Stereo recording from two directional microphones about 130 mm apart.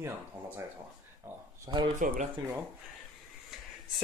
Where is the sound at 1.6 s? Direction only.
35° right (ahead or behind).